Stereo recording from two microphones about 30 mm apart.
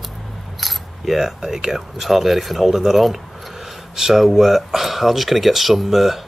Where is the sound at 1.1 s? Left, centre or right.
Centre.